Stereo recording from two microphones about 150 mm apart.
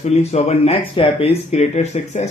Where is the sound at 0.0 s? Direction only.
45° left (ahead or behind).